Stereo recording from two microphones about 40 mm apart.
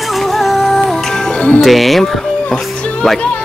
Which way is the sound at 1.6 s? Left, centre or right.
Centre.